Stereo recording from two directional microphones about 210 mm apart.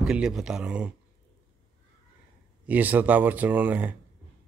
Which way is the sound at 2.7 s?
10° right (ahead or behind).